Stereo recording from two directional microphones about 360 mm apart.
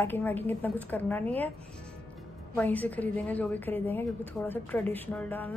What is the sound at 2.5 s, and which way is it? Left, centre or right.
A woman's voice, centre.